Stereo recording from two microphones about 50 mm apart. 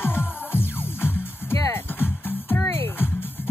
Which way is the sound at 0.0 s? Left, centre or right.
Left.